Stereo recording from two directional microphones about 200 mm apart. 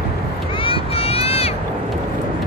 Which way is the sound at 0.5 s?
25° left (ahead or behind).